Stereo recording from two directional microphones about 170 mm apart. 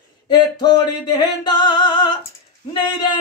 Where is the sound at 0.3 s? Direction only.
25° left (ahead or behind).